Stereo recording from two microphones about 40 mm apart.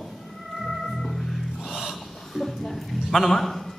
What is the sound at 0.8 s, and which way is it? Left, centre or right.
Organ, centre.